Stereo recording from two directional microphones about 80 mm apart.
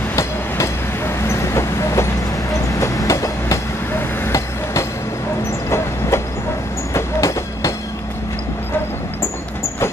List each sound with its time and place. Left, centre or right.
0.1 s vehicle: left
2.8 s train: left
5.7 s train: left